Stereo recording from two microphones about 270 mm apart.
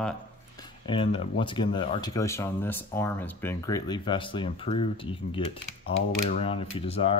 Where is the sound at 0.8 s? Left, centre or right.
Left.